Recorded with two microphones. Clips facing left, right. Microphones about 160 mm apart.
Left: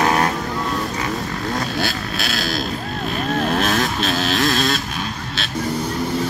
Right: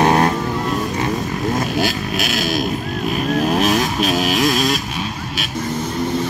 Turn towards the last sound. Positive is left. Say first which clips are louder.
# right 2 dB
turn(degrees=-10)  # may be behind; listen again after turning